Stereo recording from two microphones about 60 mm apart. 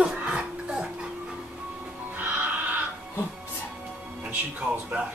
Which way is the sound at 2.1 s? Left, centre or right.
Right.